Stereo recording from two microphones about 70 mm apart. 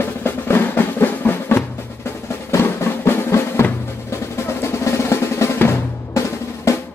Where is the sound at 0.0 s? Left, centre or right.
Left.